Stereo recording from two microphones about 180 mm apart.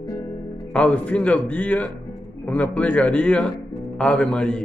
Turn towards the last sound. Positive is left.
turn(degrees=5)  # may be behind; listen again after turning